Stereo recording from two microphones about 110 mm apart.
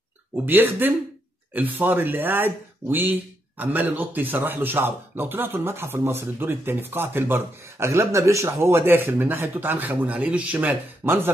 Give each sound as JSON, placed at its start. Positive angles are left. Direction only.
{"t": 0.5, "sound": "speech", "side_deg": -20}